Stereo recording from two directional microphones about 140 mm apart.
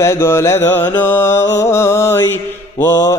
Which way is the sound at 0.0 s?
20° left (ahead or behind).